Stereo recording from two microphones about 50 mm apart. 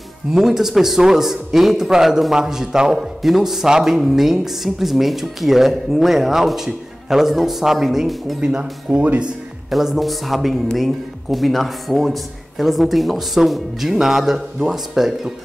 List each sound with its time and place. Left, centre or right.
0.3 s a man's voice: centre
8.4 s speech: centre
9.7 s a man's voice: centre